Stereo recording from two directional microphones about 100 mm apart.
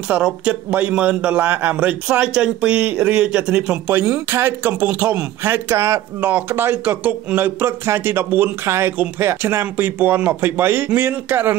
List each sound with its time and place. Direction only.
0.1 s a man's voice: 10° right (ahead or behind)